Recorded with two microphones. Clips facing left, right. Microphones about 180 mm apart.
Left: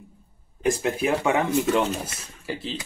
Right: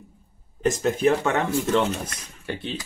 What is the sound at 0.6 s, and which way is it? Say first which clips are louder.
Speech: right 1 dB; 10° left (ahead or behind).